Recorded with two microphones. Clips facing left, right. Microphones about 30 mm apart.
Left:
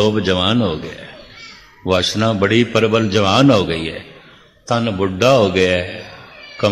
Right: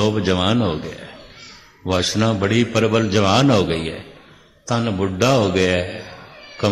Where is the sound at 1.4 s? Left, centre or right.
Centre.